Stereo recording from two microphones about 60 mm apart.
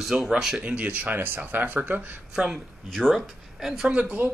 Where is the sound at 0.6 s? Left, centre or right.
Right.